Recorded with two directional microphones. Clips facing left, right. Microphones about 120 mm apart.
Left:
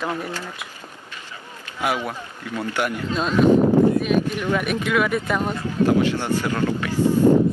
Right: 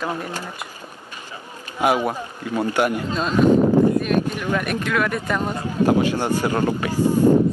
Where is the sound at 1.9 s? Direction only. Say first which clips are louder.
Right 5 dB; 35° right (ahead or behind).